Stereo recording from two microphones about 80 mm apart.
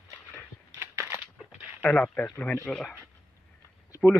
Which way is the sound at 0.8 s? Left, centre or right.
Right.